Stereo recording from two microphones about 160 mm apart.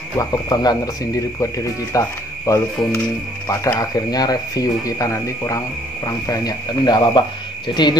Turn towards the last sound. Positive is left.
turn(degrees=30)  # may be behind; listen again after turning